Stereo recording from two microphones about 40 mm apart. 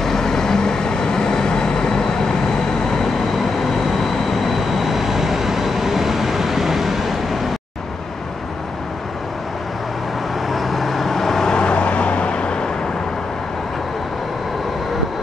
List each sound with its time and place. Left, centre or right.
0.0 s vehicle: centre
4.0 s vehicle: centre
10.5 s vehicle: centre
11.5 s vehicle: left